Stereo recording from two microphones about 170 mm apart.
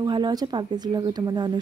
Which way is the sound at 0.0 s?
25° right (ahead or behind).